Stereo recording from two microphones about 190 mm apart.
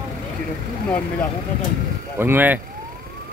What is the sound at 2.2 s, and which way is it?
Speech, 10° right (ahead or behind).